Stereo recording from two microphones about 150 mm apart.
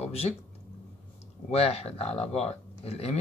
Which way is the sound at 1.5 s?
40° left (ahead or behind).